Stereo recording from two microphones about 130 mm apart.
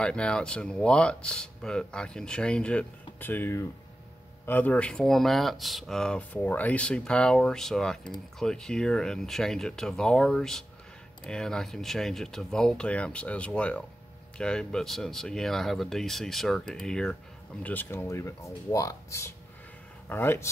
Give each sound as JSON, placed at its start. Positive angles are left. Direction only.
{"t": 0.0, "sound": "speech", "side_deg": 5}